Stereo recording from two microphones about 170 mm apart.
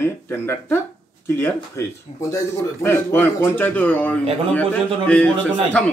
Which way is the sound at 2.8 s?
15° left (ahead or behind).